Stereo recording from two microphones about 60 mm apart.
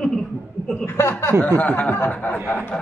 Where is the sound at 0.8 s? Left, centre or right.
Left.